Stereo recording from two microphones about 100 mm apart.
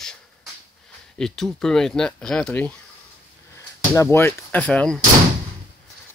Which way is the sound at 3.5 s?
30° left (ahead or behind).